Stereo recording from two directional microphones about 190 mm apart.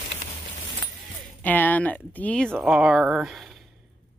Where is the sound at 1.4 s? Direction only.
10° left (ahead or behind).